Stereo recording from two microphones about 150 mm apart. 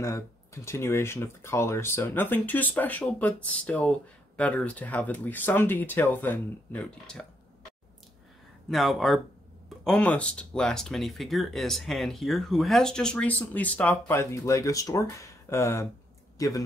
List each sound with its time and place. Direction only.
0.0 s speech: 20° left (ahead or behind)
8.6 s a man's voice: centre (ahead or behind); by 16.6 s 20° left (ahead or behind)